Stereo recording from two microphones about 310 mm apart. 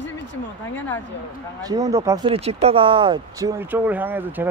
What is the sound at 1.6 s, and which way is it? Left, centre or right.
Speech, centre.